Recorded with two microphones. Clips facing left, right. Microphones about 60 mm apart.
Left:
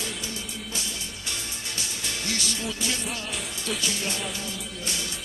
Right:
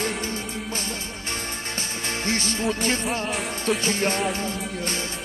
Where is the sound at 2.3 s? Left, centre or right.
Right.